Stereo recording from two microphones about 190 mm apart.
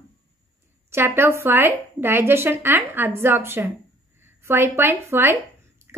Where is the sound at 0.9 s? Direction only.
10° right (ahead or behind).